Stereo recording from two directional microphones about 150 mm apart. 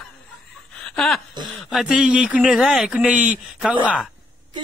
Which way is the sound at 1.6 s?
Centre (ahead or behind).